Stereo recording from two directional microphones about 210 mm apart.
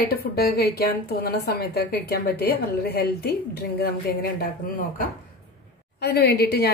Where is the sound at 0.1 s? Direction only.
45° left (ahead or behind).